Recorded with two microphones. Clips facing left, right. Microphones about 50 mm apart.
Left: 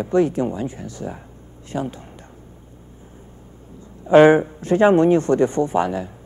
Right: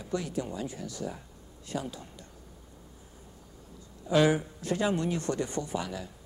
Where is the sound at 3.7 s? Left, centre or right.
Left.